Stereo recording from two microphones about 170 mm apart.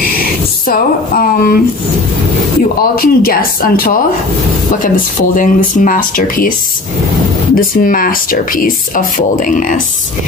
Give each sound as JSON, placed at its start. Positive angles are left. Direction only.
{"t": 0.7, "sound": "speech", "side_deg": 55}
{"t": 2.8, "sound": "speech", "side_deg": 60}
{"t": 7.5, "sound": "speech", "side_deg": 55}